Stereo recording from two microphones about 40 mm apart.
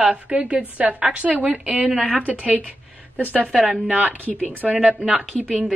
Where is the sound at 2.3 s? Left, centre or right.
Right.